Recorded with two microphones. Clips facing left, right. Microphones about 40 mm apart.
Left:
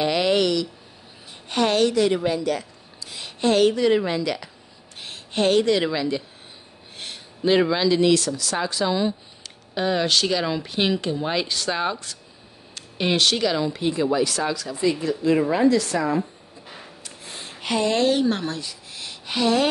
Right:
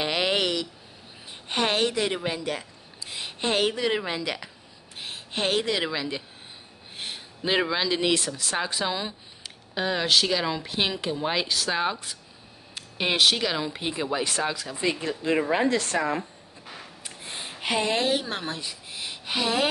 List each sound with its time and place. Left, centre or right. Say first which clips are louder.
0.0 s a sound: left 5 dB; centre
1.5 s a woman's voice: left 5 dB; right
9.8 s speech: left 2 dB; centre
14.1 s a woman's voice: left 4 dB; right
14.9 s a woman's voice: left 5 dB; right
17.0 s a sound: right 2 dB; right
17.5 s speech: left 3 dB; centre